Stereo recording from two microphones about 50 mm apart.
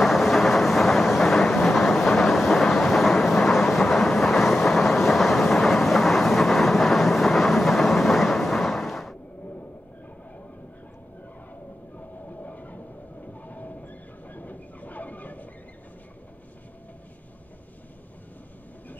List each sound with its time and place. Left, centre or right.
0.0 s thunder: centre
3.4 s train: centre
12.3 s train: left